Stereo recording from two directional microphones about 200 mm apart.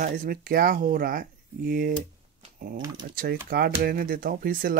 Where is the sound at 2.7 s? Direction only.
20° right (ahead or behind).